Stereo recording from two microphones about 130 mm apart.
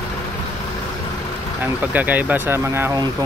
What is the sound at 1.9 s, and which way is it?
Speech, 10° right (ahead or behind).